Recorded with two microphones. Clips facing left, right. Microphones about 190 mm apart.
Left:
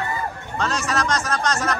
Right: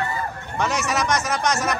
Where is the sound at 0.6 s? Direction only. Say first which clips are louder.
Right 1 dB; 15° right (ahead or behind).